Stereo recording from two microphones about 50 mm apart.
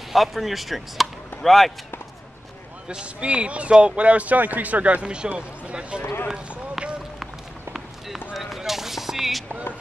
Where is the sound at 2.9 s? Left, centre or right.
Centre.